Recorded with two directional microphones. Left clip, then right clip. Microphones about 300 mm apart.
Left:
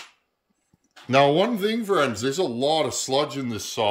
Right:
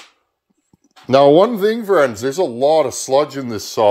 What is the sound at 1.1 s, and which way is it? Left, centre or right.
Speech, centre.